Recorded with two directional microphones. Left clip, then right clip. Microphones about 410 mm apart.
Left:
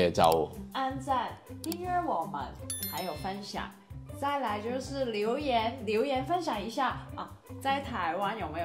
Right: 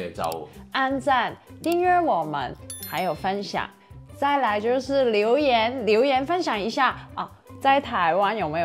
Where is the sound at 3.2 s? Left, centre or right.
Right.